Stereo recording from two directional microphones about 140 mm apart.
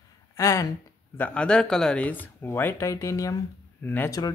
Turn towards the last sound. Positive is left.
turn(degrees=15)  # may be behind; listen again after turning